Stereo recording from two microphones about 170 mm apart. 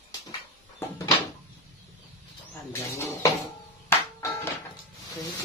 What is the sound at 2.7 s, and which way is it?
Music, 15° left (ahead or behind).